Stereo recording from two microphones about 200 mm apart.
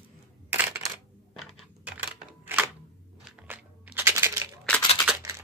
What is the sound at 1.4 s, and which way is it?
Computer keyboard, 5° right (ahead or behind).